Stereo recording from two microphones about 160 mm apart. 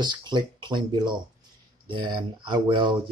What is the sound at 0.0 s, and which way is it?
Speech, 25° right (ahead or behind).